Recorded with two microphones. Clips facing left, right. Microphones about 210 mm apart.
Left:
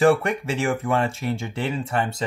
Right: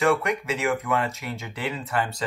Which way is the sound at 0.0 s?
30° left (ahead or behind).